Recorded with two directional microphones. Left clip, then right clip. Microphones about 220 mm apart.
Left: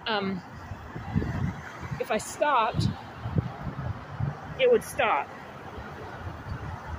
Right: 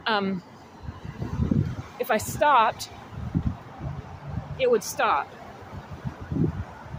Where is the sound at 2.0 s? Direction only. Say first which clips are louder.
Right 5 dB; 25° right (ahead or behind).